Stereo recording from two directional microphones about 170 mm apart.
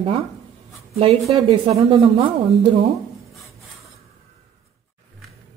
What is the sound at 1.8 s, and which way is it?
A woman's voice, 30° right (ahead or behind).